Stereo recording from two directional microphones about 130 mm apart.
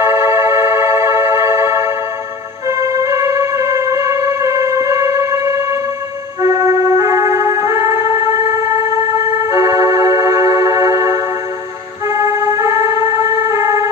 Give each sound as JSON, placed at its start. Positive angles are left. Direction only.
{"t": 0.0, "sound": "music", "side_deg": -20}
{"t": 9.5, "sound": "organ", "side_deg": -25}
{"t": 12.1, "sound": "a sound", "side_deg": -20}